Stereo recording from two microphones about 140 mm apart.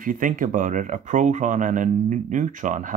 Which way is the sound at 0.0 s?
75° right (ahead or behind).